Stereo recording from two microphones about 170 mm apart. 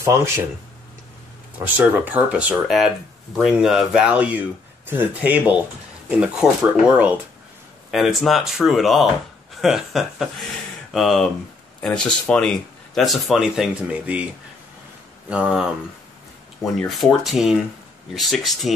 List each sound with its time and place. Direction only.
0.0 s speech: 15° right (ahead or behind)
1.6 s speech: 10° right (ahead or behind)
15.2 s speech: 5° right (ahead or behind)
16.7 s speech: centre (ahead or behind)